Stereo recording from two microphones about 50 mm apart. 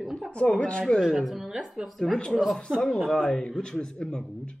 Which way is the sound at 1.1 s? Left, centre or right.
Centre.